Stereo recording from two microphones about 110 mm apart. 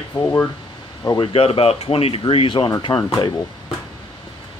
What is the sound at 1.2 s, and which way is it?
Speech, 60° left (ahead or behind).